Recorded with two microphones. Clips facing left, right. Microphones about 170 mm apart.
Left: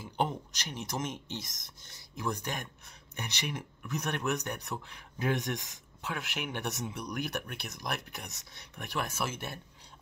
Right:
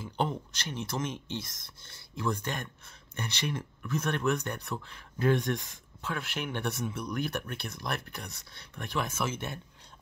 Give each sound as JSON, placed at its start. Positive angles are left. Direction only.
{"t": 0.0, "sound": "speech", "side_deg": 15}